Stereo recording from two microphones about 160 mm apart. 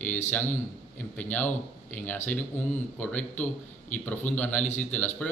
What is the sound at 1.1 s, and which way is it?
Speech, 10° left (ahead or behind).